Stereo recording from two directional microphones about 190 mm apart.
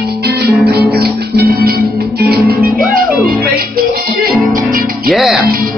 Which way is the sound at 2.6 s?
Centre (ahead or behind).